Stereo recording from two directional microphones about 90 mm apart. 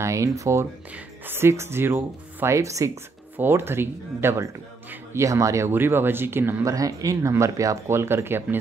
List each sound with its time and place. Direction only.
0.0 s speech: 35° right (ahead or behind)
0.9 s speech: 25° right (ahead or behind)
6.7 s speech: 40° right (ahead or behind)